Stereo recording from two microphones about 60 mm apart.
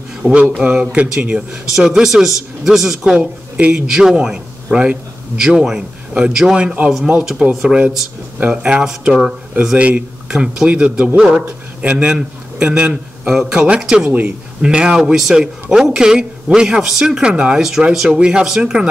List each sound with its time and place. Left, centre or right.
0.2 s a man's voice: centre
3.2 s speech: right
3.8 s a man's voice: centre
10.3 s a man's voice: centre
10.7 s a man's voice: right
13.3 s a man's voice: centre
17.6 s a man's voice: centre